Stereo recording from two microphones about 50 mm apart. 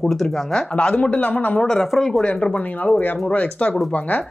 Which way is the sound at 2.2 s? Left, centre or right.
Left.